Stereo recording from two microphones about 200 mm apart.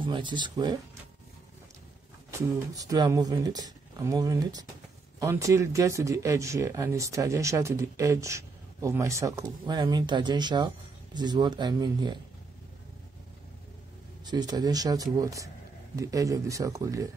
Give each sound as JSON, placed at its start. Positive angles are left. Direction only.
{"t": 0.0, "sound": "speech", "side_deg": -25}
{"t": 2.3, "sound": "speech", "side_deg": -15}
{"t": 14.2, "sound": "speech", "side_deg": -20}